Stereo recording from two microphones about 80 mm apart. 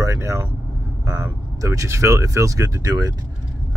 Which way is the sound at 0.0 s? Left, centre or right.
Right.